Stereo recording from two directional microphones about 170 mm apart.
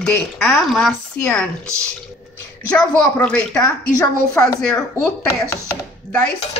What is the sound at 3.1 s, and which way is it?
Speech, 5° left (ahead or behind).